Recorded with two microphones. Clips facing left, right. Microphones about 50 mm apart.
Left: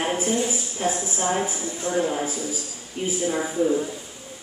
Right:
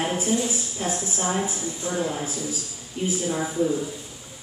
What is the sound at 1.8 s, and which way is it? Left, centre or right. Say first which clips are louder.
Speech: left 4 dB; left.